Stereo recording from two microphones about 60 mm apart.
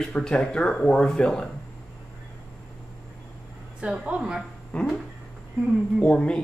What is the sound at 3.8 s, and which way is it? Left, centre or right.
Speech, centre.